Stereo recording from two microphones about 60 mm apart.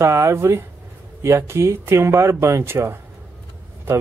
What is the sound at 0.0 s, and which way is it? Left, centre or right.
Speech, right.